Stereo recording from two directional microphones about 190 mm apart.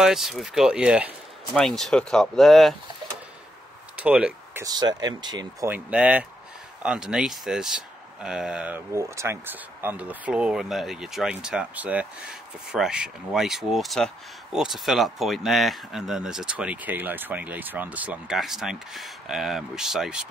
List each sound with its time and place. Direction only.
0.0 s speech: centre (ahead or behind)
3.9 s a sound: 5° right (ahead or behind)
4.6 s speech: 20° right (ahead or behind)
5.7 s speech: 5° right (ahead or behind)